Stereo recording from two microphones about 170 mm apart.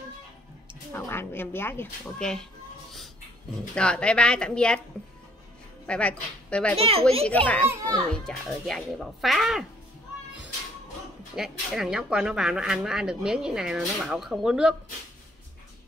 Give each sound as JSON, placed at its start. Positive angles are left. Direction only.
{"t": 0.9, "sound": "speech", "side_deg": 15}
{"t": 3.7, "sound": "speech", "side_deg": 5}
{"t": 5.9, "sound": "a woman's voice", "side_deg": 5}
{"t": 6.8, "sound": "a child's voice", "side_deg": -35}
{"t": 7.2, "sound": "a child's voice", "side_deg": 10}
{"t": 11.3, "sound": "speech", "side_deg": -5}